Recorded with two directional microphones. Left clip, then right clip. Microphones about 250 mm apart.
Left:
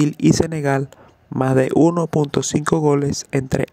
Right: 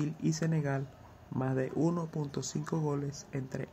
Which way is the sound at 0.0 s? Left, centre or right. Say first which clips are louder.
Left 18 dB; left.